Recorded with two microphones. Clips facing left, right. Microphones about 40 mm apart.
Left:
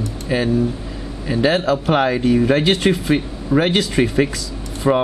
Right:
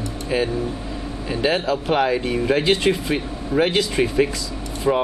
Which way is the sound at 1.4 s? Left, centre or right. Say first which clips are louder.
Left 4 dB; left.